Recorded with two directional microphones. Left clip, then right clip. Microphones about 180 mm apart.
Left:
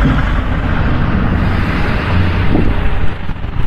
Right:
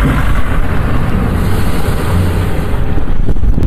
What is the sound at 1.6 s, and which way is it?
Music, 90° right.